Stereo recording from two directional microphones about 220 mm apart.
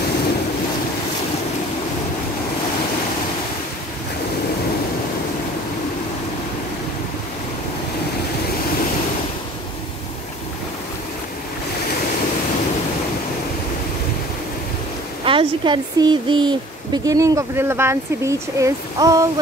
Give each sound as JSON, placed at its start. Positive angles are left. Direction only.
{"t": 15.2, "sound": "a woman's voice", "side_deg": -20}